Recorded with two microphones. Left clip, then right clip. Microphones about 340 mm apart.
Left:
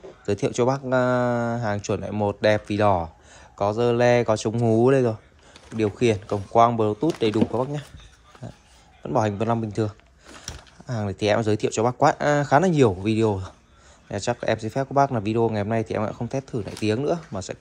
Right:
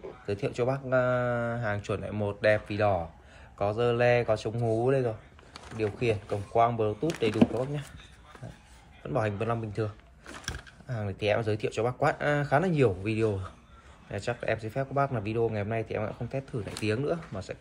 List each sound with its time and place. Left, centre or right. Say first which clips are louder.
0.3 s speech: left 7 dB; left
9.0 s speech: left 7 dB; centre
10.9 s speech: left 6 dB; centre